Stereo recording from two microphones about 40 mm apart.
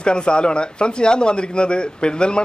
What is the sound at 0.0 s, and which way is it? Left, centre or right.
A man's voice, left.